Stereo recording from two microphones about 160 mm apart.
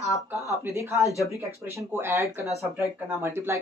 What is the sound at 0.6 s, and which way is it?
Speech, 15° right (ahead or behind).